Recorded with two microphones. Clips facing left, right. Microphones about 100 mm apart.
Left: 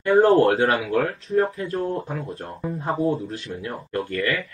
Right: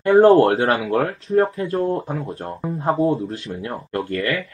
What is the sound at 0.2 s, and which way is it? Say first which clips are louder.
Speech: right 3 dB; 35° right (ahead or behind).